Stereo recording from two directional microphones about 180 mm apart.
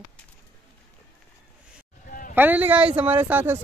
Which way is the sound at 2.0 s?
50° left (ahead or behind).